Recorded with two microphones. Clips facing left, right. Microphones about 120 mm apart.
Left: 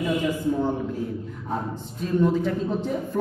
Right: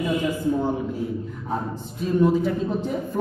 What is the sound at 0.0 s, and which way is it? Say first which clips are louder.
A man's voice: right 1 dB; 5° right (ahead or behind).